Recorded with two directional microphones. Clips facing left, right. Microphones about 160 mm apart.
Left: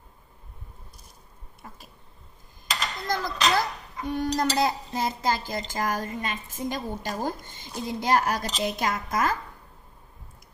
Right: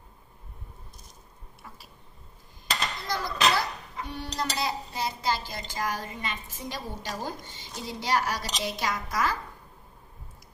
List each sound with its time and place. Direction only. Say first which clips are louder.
3.1 s a child's voice: left 1 dB; 45° left (ahead or behind)